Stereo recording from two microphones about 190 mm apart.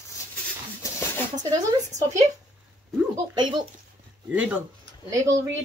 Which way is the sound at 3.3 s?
25° right (ahead or behind).